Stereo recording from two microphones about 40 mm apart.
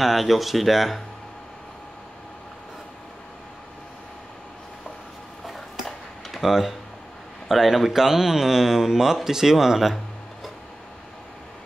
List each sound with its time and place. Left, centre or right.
0.0 s speech: centre
6.3 s speech: centre